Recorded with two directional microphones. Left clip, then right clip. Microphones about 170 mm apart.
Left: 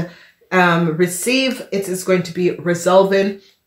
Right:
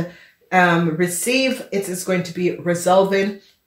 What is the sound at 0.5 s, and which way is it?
Speech, 35° left (ahead or behind).